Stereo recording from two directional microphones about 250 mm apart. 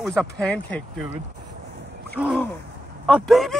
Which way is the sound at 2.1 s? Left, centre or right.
Centre.